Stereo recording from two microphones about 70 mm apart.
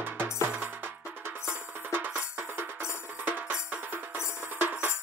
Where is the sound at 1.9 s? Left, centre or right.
Right.